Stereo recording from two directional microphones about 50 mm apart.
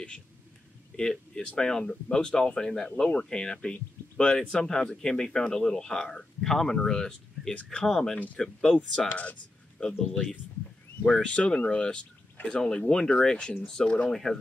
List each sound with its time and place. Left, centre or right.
0.9 s speech: centre
9.1 s speech: left
11.1 s speech: centre
11.3 s speech: left